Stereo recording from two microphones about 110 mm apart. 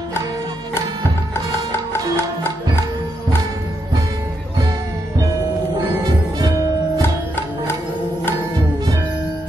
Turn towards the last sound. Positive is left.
turn(degrees=20)  # may be behind; listen again after turning